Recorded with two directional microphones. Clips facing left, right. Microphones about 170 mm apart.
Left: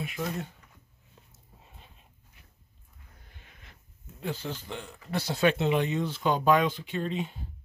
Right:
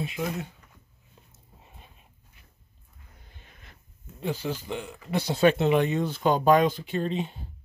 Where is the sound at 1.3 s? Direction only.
20° right (ahead or behind).